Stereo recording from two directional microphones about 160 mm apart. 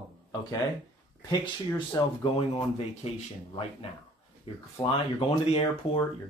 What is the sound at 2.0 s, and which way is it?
Speech, 20° left (ahead or behind).